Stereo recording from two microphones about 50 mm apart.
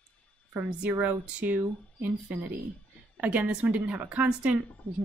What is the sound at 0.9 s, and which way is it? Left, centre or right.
Speech, right.